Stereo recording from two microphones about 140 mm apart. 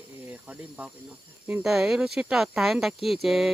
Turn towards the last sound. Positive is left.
turn(degrees=0)  # may be behind; listen again after turning